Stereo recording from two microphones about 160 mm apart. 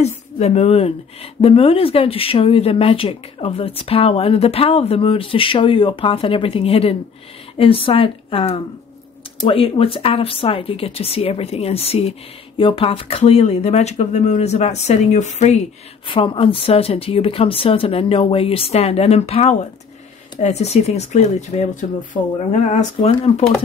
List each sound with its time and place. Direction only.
0.0 s speech: 45° left (ahead or behind)
16.1 s speech: 35° left (ahead or behind)